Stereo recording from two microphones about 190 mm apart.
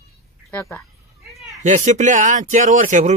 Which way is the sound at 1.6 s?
40° right (ahead or behind).